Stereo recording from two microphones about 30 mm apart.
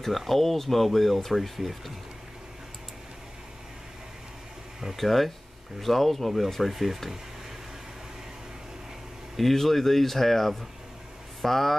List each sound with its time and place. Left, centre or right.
0.3 s speech: centre
4.9 s speech: centre
9.4 s speech: centre